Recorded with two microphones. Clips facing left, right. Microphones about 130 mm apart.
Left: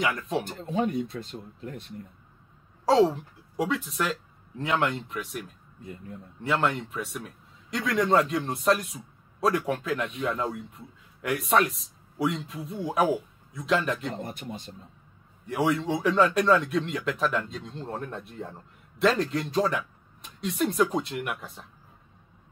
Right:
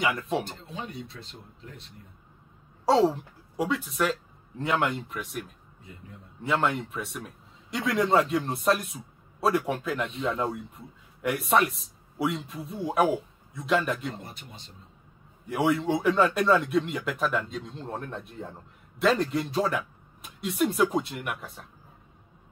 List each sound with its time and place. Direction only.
0.0 s a man's voice: centre (ahead or behind)
0.5 s speech: 50° left (ahead or behind)
2.8 s a woman's voice: centre (ahead or behind)
14.2 s speech: 50° left (ahead or behind)
15.4 s a man's voice: centre (ahead or behind)